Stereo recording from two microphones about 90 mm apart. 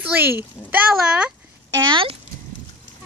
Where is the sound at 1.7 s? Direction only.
50° right (ahead or behind).